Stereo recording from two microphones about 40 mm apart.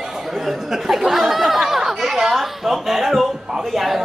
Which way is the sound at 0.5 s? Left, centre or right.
Centre.